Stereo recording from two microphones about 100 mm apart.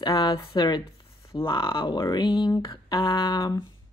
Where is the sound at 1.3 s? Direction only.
55° left (ahead or behind).